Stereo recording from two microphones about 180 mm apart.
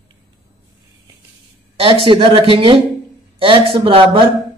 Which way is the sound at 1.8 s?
30° right (ahead or behind).